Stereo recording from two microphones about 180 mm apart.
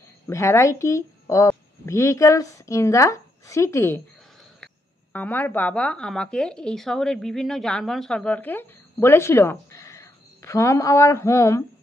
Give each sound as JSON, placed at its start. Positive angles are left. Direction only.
{"t": 0.3, "sound": "a woman's voice", "side_deg": 15}
{"t": 5.1, "sound": "a woman's voice", "side_deg": 10}